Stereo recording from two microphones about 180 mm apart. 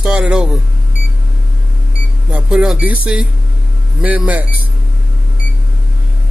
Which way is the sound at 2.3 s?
5° right (ahead or behind).